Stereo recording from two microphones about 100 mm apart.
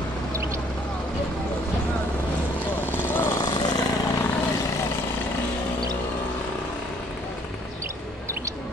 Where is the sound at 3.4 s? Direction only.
45° left (ahead or behind).